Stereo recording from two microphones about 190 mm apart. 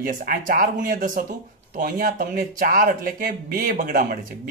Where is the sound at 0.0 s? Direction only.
50° right (ahead or behind).